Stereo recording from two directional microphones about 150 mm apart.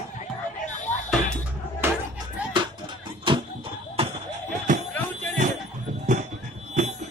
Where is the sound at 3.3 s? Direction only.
35° right (ahead or behind).